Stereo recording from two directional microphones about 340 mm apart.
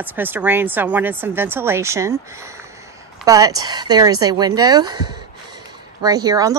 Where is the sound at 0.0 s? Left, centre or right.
Centre.